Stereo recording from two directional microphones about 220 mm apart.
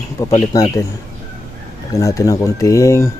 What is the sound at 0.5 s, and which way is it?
Speech, 15° left (ahead or behind).